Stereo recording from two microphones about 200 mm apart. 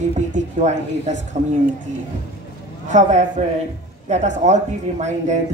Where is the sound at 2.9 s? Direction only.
35° right (ahead or behind).